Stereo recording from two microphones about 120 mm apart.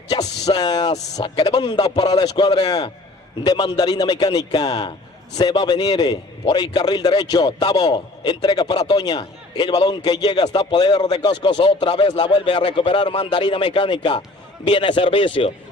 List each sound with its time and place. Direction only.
0.1 s a man's voice: 35° left (ahead or behind)